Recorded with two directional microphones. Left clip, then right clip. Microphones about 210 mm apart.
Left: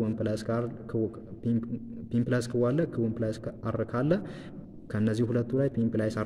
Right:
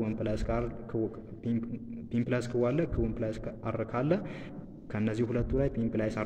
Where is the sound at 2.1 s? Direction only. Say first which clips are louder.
Left 2 dB; 50° left (ahead or behind).